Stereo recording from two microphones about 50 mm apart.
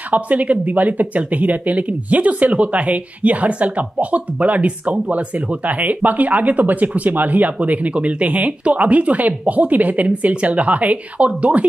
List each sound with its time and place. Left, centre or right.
0.1 s speech: right